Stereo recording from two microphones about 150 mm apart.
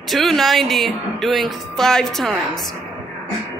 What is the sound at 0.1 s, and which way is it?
Speech, centre (ahead or behind).